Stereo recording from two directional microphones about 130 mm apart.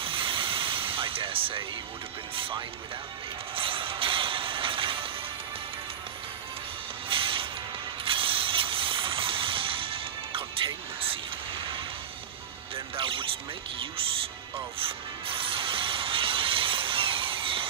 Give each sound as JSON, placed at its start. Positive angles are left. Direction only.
{"t": 0.0, "sound": "music", "side_deg": -40}
{"t": 2.3, "sound": "speech", "side_deg": -45}
{"t": 3.5, "sound": "music", "side_deg": -45}
{"t": 7.1, "sound": "music", "side_deg": -40}
{"t": 8.0, "sound": "a sound", "side_deg": -45}
{"t": 12.7, "sound": "speech", "side_deg": -45}
{"t": 14.8, "sound": "music", "side_deg": -45}